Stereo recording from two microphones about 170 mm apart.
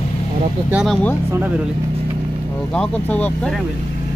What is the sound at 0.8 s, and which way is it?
Speech, centre (ahead or behind).